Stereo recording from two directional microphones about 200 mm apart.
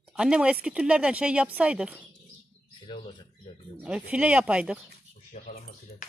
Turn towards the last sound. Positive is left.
turn(degrees=40)  # may be behind; listen again after turning